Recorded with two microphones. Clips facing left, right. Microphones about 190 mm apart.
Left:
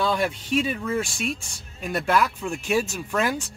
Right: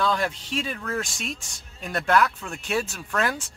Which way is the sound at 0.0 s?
10° left (ahead or behind).